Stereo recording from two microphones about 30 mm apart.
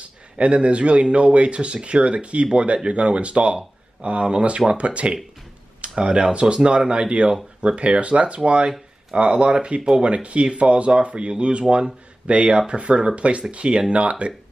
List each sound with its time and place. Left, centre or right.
0.0 s a man's voice: right
9.8 s speech: right
10.0 s a man's voice: right